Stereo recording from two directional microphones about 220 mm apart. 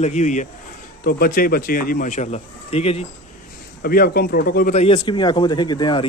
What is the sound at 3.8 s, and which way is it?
Speech, 40° left (ahead or behind).